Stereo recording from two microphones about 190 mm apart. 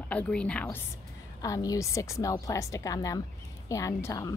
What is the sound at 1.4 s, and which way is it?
A woman's voice, 20° left (ahead or behind).